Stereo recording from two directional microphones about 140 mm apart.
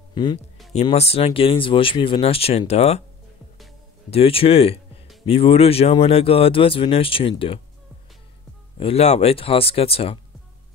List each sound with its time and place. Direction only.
0.1 s speech: 30° left (ahead or behind)
0.9 s speech: 45° left (ahead or behind)
4.1 s a man's voice: 40° left (ahead or behind)
8.7 s speech: 45° left (ahead or behind)